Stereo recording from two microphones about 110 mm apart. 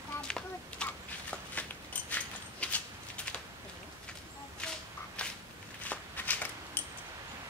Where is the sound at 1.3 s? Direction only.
15° left (ahead or behind).